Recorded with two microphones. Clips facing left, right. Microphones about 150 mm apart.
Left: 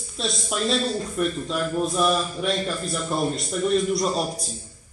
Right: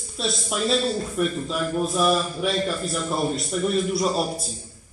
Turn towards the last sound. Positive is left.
turn(degrees=0)  # may be behind; listen again after turning